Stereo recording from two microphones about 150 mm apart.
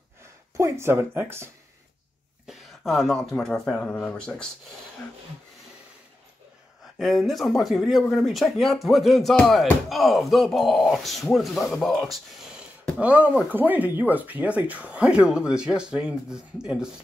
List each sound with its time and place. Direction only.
0.6 s speech: 20° right (ahead or behind)
2.4 s speech: centre (ahead or behind)
7.0 s speech: centre (ahead or behind)